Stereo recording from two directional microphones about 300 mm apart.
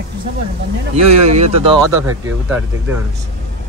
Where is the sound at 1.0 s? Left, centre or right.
Right.